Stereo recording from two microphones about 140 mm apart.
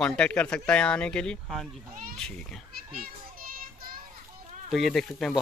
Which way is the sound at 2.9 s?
90° right.